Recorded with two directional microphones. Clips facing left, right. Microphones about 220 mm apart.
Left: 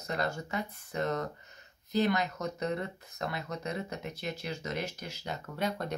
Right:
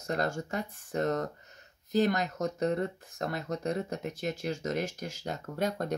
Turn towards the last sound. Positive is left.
turn(degrees=-45)  # may be behind; listen again after turning